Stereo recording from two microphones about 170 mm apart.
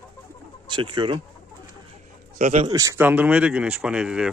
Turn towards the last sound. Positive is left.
turn(degrees=-5)  # may be behind; listen again after turning